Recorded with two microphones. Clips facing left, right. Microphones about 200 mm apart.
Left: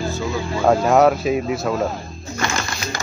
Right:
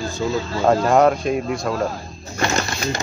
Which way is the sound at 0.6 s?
5° left (ahead or behind).